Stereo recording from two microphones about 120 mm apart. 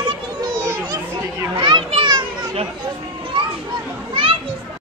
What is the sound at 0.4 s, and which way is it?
Children playing, 30° right (ahead or behind).